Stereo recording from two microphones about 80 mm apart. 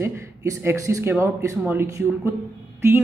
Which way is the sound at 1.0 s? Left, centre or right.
Right.